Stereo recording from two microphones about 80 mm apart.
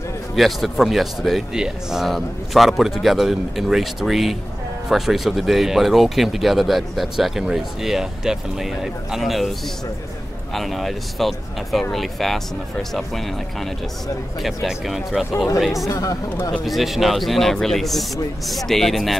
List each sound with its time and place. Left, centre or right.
0.4 s speech: centre
10.5 s speech: centre
15.9 s speech: left
16.6 s speech: centre